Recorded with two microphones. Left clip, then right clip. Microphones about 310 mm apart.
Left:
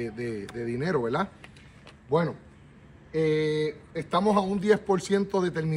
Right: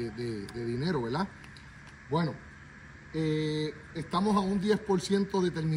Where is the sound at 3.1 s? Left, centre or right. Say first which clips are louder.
Left 7 dB; centre.